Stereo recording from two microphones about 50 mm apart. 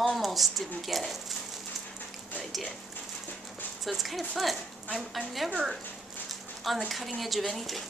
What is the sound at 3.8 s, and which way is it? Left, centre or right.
Speech, centre.